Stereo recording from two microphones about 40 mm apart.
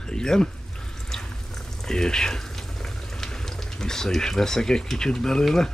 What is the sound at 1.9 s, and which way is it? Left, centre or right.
Speech, centre.